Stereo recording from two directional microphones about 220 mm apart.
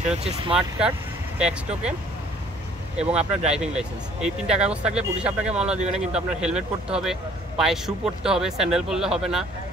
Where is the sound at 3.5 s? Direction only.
5° right (ahead or behind).